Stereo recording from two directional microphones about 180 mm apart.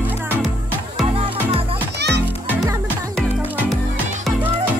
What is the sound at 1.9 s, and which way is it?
Music, 70° right (ahead or behind).